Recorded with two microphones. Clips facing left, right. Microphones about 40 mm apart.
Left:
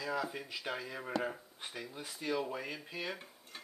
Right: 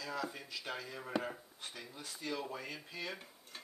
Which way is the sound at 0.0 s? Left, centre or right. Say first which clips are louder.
Left 4 dB; centre.